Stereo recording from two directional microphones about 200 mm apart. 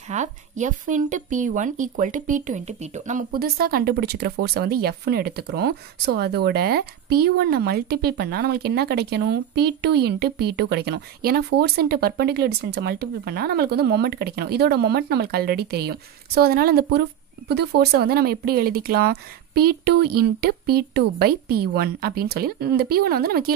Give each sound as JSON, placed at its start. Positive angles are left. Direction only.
{"t": 0.1, "sound": "a woman's voice", "side_deg": -35}